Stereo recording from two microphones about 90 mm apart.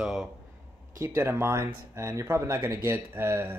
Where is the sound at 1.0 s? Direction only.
30° right (ahead or behind).